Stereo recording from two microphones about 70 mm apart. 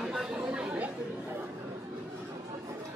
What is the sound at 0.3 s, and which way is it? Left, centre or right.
Chatter, right.